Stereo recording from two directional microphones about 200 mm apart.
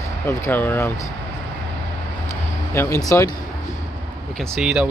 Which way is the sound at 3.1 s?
15° left (ahead or behind).